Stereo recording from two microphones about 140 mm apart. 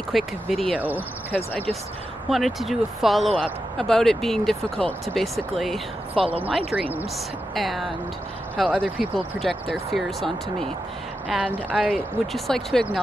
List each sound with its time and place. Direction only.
0.1 s speech: centre (ahead or behind)
0.7 s speech: 10° right (ahead or behind)
1.3 s speech: 10° left (ahead or behind)
2.2 s speech: centre (ahead or behind)
6.7 s speech: 10° right (ahead or behind)
7.5 s speech: centre (ahead or behind)